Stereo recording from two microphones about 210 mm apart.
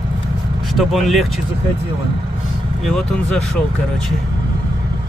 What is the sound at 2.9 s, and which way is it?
Speech, centre (ahead or behind).